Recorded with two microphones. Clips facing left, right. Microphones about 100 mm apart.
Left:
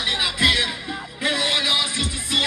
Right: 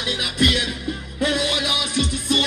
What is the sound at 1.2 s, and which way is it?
Music, 30° right (ahead or behind).